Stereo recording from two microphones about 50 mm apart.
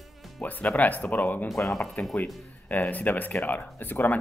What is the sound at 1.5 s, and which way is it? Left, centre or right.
Speech, centre.